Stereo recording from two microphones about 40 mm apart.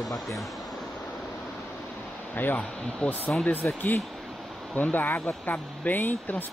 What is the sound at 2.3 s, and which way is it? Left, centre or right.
Speech, left.